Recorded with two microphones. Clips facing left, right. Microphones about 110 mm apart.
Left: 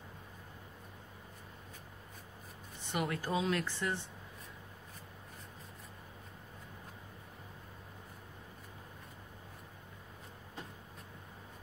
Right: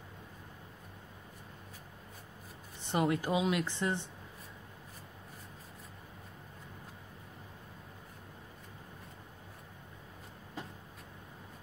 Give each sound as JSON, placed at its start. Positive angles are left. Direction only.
{"t": 2.9, "sound": "speech", "side_deg": -25}